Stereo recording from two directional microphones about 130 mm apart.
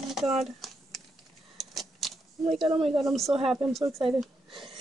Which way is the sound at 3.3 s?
5° right (ahead or behind).